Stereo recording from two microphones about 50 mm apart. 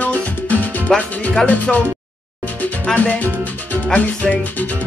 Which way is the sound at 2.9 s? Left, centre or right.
Left.